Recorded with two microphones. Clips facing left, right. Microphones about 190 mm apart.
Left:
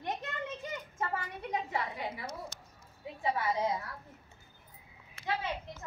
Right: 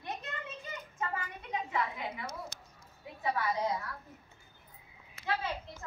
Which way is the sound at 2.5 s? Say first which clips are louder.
Left 1 dB; 70° right (ahead or behind).